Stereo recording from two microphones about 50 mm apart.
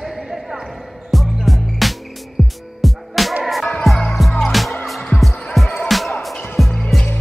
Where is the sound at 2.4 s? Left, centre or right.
Centre.